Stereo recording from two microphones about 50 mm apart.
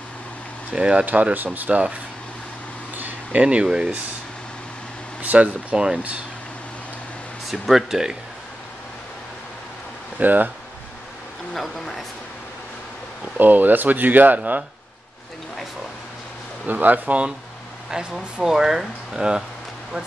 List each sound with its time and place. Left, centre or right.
0.7 s speech: right
1.0 s speech: right
3.0 s a sound: right
3.6 s speech: centre
5.2 s speech: right
7.5 s speech: centre
10.1 s speech: right
11.5 s speech: centre
13.4 s speech: right
16.6 s speech: right
17.9 s speech: centre